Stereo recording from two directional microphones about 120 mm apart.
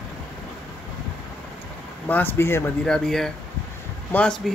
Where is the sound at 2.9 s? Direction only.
5° left (ahead or behind).